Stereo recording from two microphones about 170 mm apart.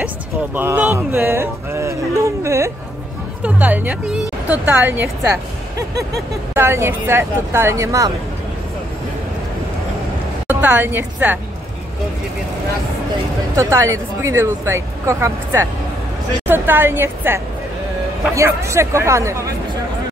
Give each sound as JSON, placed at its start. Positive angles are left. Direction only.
{"t": 0.6, "sound": "a woman's voice", "side_deg": -10}
{"t": 10.4, "sound": "a woman's voice", "side_deg": -10}
{"t": 13.6, "sound": "a woman's voice", "side_deg": -15}